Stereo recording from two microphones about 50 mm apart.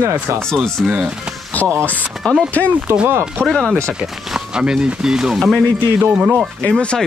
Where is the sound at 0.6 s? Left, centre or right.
Centre.